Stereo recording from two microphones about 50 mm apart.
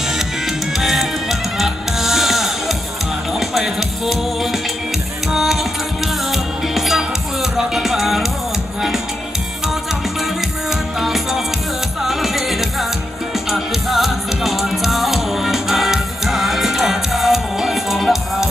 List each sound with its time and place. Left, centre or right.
0.7 s music: centre
10.7 s music: centre